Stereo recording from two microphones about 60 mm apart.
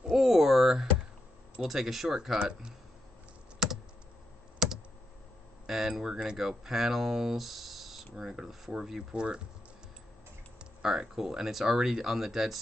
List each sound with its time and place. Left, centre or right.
0.1 s a sound: centre
1.6 s speech: centre
3.5 s computer keyboard: centre
5.7 s speech: centre
10.6 s speech: centre